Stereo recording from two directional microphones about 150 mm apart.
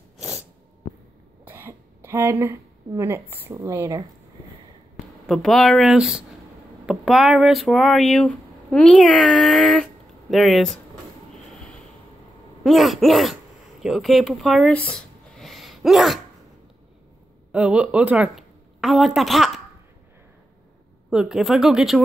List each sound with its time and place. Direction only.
1.4 s speech: 15° right (ahead or behind)
5.2 s speech: centre (ahead or behind)
12.6 s speech: centre (ahead or behind)
14.9 s cough: 5° left (ahead or behind)
17.5 s a woman's voice: 10° right (ahead or behind)
21.1 s speech: 5° right (ahead or behind)